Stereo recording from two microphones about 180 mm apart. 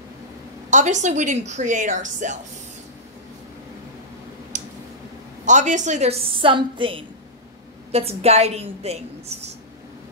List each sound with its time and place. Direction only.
0.7 s a woman's voice: 40° right (ahead or behind)
4.5 s clicking: 40° right (ahead or behind)
5.4 s a woman's voice: 40° right (ahead or behind)